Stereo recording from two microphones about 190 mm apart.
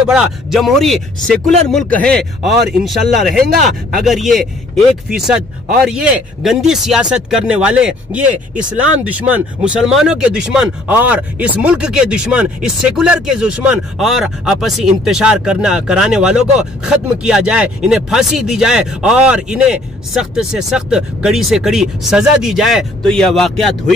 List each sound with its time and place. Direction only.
0.0 s speech: 5° right (ahead or behind)
1.4 s speech: 35° right (ahead or behind)
1.7 s speech: 5° left (ahead or behind)